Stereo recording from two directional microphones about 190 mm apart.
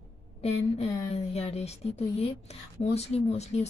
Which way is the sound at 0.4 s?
35° left (ahead or behind).